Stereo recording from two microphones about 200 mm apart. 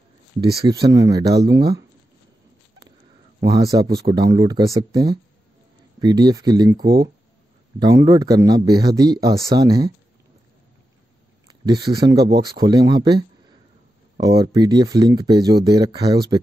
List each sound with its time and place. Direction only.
0.7 s speech: 20° right (ahead or behind)
3.3 s speech: 20° right (ahead or behind)
11.6 s speech: 20° right (ahead or behind)
14.2 s speech: 20° right (ahead or behind)